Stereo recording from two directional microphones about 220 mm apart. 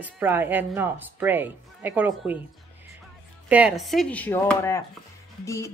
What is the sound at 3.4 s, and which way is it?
Speech, 5° right (ahead or behind).